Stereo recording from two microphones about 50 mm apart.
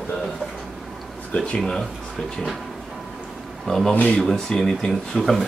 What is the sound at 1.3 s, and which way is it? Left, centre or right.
Speech, centre.